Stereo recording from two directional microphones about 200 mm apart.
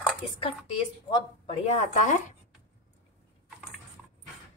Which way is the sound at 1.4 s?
35° left (ahead or behind).